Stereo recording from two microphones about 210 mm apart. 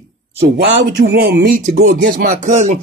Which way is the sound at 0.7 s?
55° right (ahead or behind).